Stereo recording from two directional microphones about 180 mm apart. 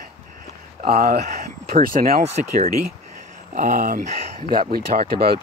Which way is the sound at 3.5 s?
45° right (ahead or behind).